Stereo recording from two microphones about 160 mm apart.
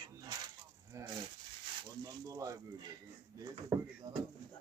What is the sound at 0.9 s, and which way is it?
Speech, 15° right (ahead or behind).